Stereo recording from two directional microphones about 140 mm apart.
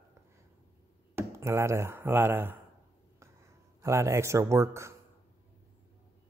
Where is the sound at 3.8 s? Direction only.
20° right (ahead or behind).